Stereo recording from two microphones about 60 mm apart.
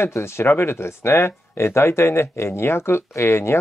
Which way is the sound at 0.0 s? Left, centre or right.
Left.